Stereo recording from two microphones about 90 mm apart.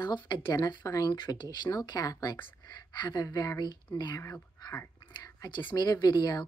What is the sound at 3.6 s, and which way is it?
Speech, 55° left (ahead or behind).